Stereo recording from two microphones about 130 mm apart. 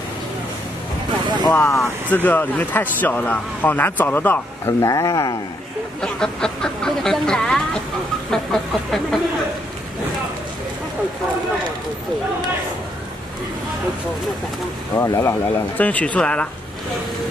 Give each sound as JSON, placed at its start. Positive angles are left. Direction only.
{"t": 1.5, "sound": "speech", "side_deg": 15}
{"t": 5.9, "sound": "speech", "side_deg": 5}
{"t": 8.3, "sound": "a sound", "side_deg": 0}
{"t": 15.0, "sound": "speech", "side_deg": 20}